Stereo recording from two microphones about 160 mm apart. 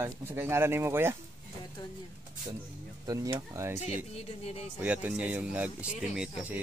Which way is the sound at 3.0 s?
20° right (ahead or behind).